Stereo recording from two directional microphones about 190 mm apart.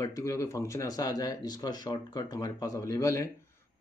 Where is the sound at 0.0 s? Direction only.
15° left (ahead or behind).